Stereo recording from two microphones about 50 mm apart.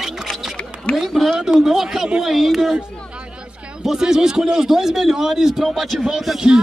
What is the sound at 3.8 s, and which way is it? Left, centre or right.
A man's voice, centre.